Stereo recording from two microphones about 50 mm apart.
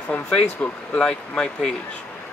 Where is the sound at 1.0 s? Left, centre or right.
Centre.